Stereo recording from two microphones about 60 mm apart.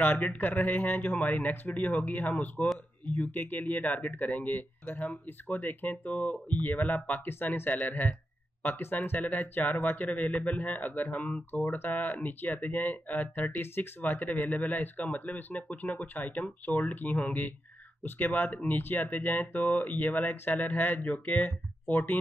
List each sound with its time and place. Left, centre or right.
0.0 s speech: left